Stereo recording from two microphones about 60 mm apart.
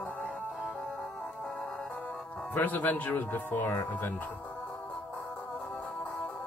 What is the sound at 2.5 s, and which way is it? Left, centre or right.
A man's voice, left.